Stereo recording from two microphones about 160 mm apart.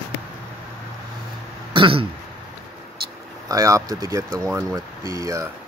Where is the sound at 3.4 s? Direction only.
20° right (ahead or behind).